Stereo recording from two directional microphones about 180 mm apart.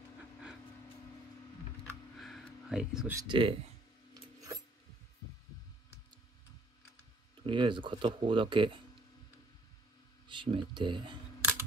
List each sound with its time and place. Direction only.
2.1 s a sound: centre (ahead or behind)
3.2 s speech: 30° right (ahead or behind)
4.1 s filing: 20° right (ahead or behind)
7.4 s speech: 25° right (ahead or behind)
10.2 s speech: 25° right (ahead or behind)